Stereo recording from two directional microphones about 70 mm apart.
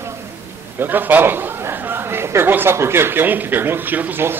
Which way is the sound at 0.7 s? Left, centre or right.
Right.